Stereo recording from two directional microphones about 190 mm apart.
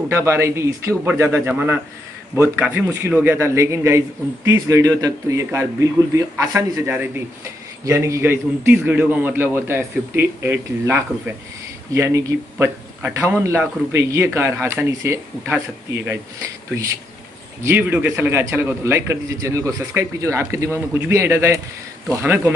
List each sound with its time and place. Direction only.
0.1 s a man's voice: 15° right (ahead or behind)
17.6 s a man's voice: 10° right (ahead or behind)